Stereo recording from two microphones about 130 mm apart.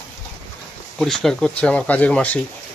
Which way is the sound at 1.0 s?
5° left (ahead or behind).